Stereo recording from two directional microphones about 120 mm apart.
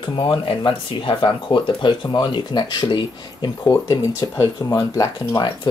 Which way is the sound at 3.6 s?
25° left (ahead or behind).